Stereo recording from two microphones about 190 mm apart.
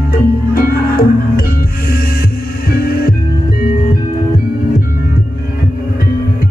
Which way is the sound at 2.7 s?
55° left (ahead or behind).